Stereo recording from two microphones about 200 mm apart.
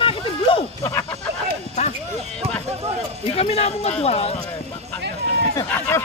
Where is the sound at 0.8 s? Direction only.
15° left (ahead or behind).